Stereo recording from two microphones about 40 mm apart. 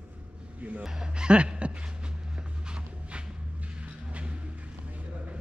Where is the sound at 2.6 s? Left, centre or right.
Right.